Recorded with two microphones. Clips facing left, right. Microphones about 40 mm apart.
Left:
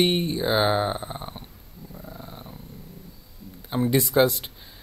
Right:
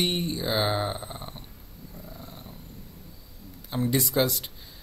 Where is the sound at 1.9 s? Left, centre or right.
Centre.